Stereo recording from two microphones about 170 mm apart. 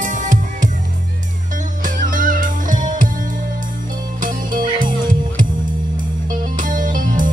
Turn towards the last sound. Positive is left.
turn(degrees=-50)  # may be behind; listen again after turning